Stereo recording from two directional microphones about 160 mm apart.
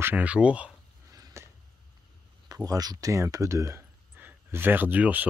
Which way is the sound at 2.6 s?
25° right (ahead or behind).